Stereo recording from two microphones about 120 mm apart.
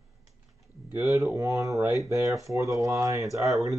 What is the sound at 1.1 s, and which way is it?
Speech, 25° right (ahead or behind).